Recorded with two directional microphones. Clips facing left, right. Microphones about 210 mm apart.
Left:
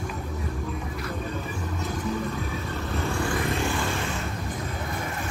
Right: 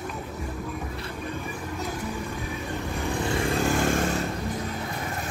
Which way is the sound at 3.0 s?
20° right (ahead or behind).